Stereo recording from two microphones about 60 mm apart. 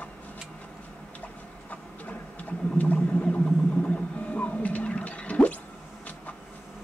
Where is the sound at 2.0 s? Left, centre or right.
Left.